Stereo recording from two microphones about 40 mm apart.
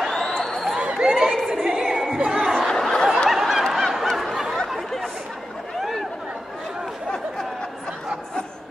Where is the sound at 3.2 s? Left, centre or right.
Centre.